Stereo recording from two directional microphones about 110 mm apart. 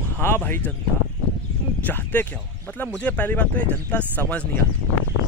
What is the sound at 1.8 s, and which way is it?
Speech, 15° left (ahead or behind).